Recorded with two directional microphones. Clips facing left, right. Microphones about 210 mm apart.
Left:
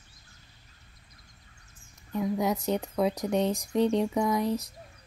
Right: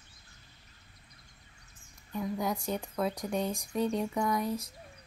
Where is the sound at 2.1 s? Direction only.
20° left (ahead or behind).